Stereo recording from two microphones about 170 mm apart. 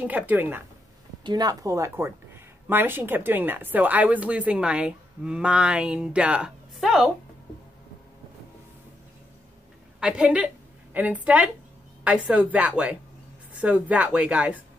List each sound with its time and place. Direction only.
0.0 s speech: 10° right (ahead or behind)
1.2 s speech: 25° right (ahead or behind); by 7.1 s centre (ahead or behind)
9.9 s speech: 5° right (ahead or behind)